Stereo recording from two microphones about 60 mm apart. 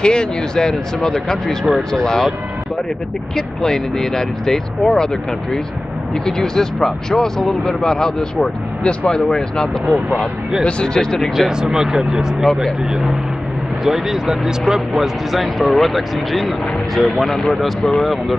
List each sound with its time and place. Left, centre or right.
0.0 s speech: centre
3.3 s speech: centre
8.8 s speech: centre
9.2 s speech: centre
10.8 s speech: centre
11.3 s speech: centre